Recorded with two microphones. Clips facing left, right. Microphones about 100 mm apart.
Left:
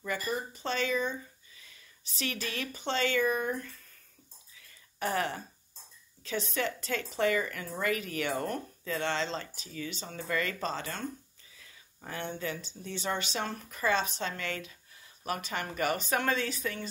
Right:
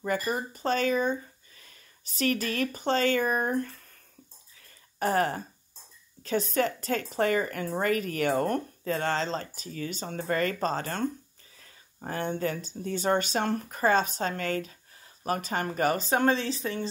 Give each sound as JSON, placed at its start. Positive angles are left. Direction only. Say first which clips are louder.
{"t": 0.2, "sound": "speech", "louder": "right 4 dB", "side_deg": -55}
{"t": 4.6, "sound": "a sound", "louder": "right 5 dB", "side_deg": -40}
{"t": 6.2, "sound": "speech", "louder": "right 6 dB", "side_deg": -45}